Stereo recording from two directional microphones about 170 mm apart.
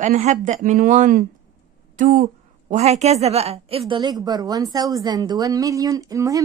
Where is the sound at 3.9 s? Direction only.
25° right (ahead or behind).